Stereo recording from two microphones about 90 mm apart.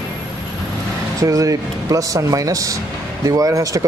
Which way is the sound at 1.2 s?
40° right (ahead or behind).